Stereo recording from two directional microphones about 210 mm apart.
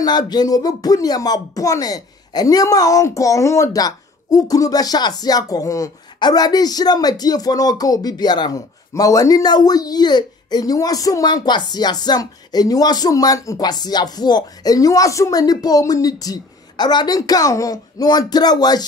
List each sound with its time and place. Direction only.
0.0 s speech: 20° left (ahead or behind)